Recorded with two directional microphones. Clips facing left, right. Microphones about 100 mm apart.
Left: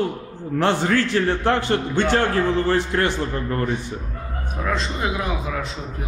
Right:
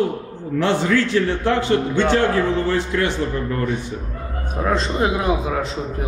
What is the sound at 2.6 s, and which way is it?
Speech, 40° left (ahead or behind).